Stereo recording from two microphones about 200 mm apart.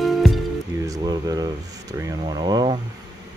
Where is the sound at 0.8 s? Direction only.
15° right (ahead or behind).